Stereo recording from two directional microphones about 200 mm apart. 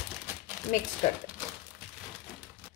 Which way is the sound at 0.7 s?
45° left (ahead or behind).